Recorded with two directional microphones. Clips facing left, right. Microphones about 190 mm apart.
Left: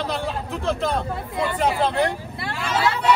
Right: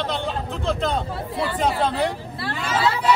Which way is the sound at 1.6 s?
Centre (ahead or behind).